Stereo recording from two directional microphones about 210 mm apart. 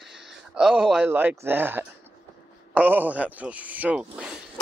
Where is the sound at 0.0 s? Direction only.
Centre (ahead or behind).